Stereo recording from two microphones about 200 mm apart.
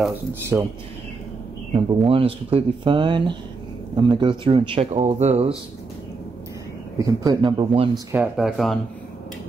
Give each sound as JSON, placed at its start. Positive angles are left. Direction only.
{"t": 0.3, "sound": "speech", "side_deg": -10}
{"t": 1.9, "sound": "speech", "side_deg": -25}
{"t": 7.0, "sound": "speech", "side_deg": -20}
{"t": 7.9, "sound": "speech", "side_deg": -5}